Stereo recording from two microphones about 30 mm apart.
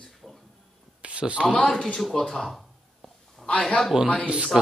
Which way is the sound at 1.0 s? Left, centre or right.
Right.